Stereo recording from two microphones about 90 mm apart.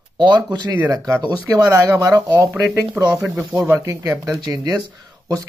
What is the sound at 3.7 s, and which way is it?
Speech, 35° right (ahead or behind).